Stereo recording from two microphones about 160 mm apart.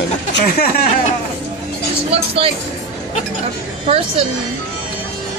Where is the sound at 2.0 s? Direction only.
35° right (ahead or behind).